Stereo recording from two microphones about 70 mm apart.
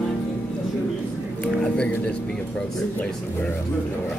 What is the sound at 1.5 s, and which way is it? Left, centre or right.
Speech, centre.